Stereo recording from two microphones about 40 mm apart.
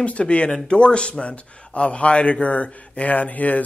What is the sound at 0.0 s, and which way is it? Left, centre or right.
A man's voice, left.